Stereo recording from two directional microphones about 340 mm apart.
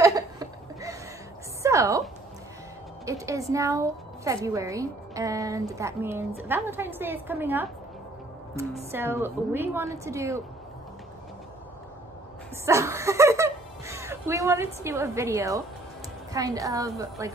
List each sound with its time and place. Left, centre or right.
0.0 s laughter: centre
1.6 s a sound: centre
3.1 s a woman's voice: centre
12.6 s a woman's voice: centre